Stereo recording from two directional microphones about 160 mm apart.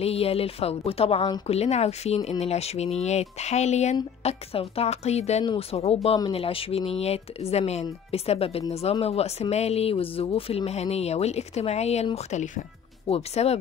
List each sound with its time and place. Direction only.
0.0 s speech: 40° left (ahead or behind)